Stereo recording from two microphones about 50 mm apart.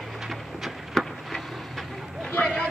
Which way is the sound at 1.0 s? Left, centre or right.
Centre.